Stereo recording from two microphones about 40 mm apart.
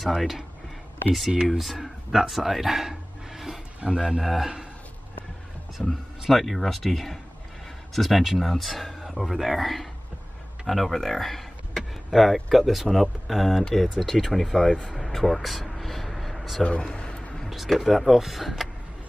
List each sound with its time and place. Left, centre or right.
0.0 s speech: centre
1.5 s a sound: centre
3.8 s speech: right
4.2 s speech: centre
5.9 s speech: centre
14.9 s vehicle: centre
16.8 s a man's voice: left
17.3 s a sound: centre
17.6 s speech: centre